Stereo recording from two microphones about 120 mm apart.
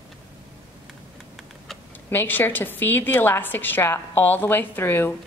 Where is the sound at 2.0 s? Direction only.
15° left (ahead or behind).